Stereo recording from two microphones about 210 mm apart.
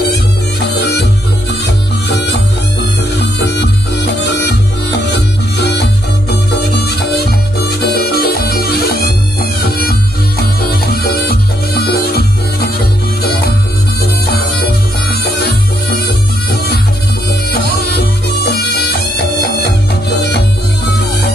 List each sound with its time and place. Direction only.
2.0 s music: 50° left (ahead or behind)
7.8 s music: 45° left (ahead or behind)
15.0 s music: 45° left (ahead or behind)
18.4 s music: 50° left (ahead or behind)